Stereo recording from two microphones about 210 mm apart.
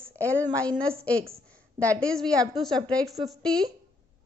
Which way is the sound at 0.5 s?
5° left (ahead or behind).